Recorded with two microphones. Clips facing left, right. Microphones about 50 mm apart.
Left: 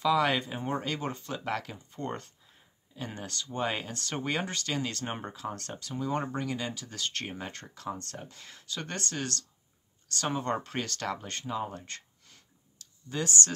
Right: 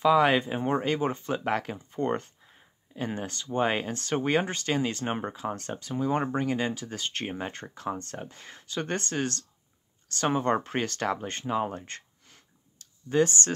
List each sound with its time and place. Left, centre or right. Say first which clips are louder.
0.0 s speech: right 5 dB; right
12.7 s clicking: right 11 dB; right